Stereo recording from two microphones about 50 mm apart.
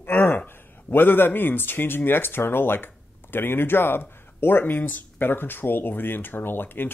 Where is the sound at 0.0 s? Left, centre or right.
Left.